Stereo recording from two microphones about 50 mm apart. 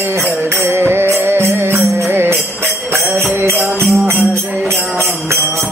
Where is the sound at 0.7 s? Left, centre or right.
Right.